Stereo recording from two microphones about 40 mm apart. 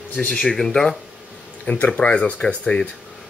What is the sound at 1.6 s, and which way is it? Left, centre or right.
Speech, left.